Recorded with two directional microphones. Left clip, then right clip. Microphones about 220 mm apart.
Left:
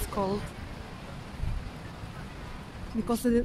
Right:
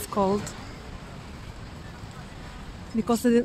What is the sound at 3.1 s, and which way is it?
Speech, 35° right (ahead or behind).